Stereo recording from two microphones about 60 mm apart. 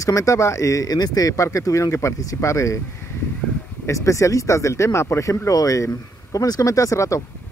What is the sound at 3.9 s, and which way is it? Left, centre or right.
Speech, left.